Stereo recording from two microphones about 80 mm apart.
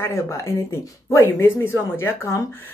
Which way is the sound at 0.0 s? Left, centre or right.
Left.